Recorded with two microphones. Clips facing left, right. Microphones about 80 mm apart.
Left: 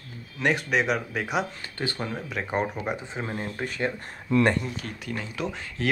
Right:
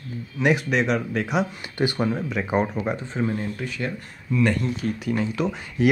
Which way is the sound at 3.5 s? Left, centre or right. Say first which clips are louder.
Left 1 dB; left.